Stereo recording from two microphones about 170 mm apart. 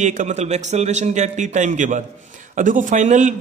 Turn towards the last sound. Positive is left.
turn(degrees=-45)  # may be behind; listen again after turning